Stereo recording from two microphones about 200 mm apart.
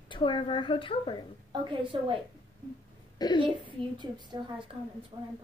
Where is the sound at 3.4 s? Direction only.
25° right (ahead or behind).